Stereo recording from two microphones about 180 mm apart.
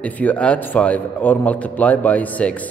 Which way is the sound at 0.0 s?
10° left (ahead or behind).